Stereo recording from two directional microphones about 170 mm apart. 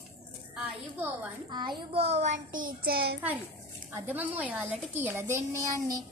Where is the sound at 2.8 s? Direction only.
65° right (ahead or behind).